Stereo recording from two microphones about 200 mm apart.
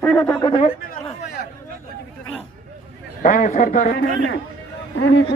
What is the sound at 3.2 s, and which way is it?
Speech, 40° left (ahead or behind).